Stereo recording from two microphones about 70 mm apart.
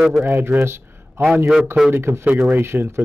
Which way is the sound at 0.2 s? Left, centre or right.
Right.